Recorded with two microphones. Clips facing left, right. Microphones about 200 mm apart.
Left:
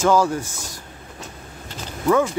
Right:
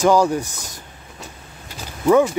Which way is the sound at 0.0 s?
15° right (ahead or behind).